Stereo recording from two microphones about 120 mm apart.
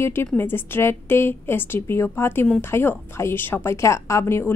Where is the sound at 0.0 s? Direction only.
20° left (ahead or behind).